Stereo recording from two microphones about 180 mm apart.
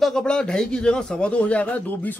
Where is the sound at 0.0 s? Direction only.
5° left (ahead or behind).